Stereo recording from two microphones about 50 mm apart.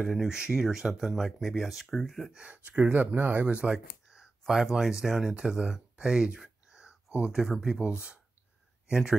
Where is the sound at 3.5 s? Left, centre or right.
Right.